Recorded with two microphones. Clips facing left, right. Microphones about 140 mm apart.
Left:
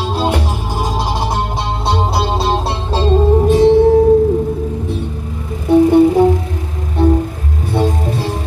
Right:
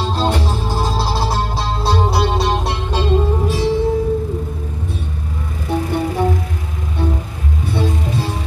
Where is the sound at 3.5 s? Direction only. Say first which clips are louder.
Left 11 dB; 50° left (ahead or behind).